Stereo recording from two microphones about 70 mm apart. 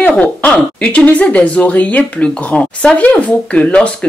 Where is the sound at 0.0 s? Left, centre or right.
Centre.